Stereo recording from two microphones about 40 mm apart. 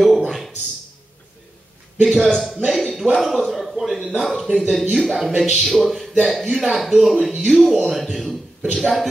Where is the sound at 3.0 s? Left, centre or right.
Centre.